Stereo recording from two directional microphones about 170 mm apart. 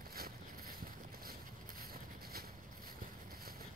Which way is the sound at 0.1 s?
60° right (ahead or behind).